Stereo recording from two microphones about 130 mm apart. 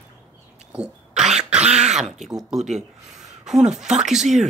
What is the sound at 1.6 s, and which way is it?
Speech, 55° right (ahead or behind).